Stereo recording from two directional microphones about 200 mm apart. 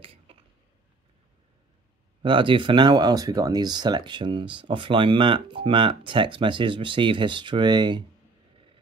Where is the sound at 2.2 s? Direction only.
25° right (ahead or behind).